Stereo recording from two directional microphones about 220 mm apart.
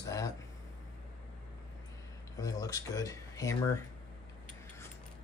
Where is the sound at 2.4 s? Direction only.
15° left (ahead or behind).